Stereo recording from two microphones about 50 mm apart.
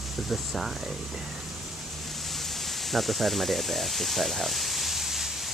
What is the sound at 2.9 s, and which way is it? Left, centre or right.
Speech, centre.